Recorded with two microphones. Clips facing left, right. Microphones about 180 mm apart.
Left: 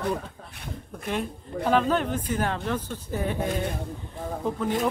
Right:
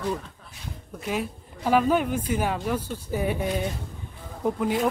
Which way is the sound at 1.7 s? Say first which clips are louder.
Right 2 dB; 10° right (ahead or behind).